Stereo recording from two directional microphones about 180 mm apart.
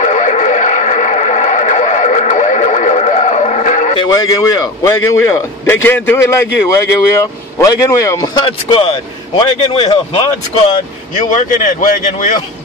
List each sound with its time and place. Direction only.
0.0 s radio: 40° left (ahead or behind)
3.9 s speech: 25° left (ahead or behind)
8.5 s a man's voice: 30° left (ahead or behind)
11.2 s speech: 45° left (ahead or behind)